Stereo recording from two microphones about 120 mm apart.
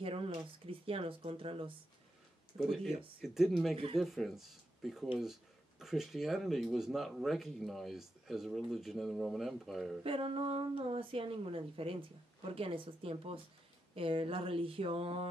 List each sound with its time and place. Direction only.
0.0 s speech: 50° right (ahead or behind)
3.0 s speech: 5° right (ahead or behind)
3.7 s speech: 50° right (ahead or behind)
4.0 s speech: centre (ahead or behind)
10.0 s speech: 50° right (ahead or behind)